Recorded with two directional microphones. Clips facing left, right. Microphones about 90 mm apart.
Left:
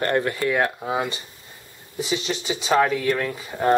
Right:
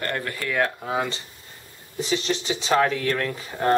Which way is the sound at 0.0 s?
25° left (ahead or behind).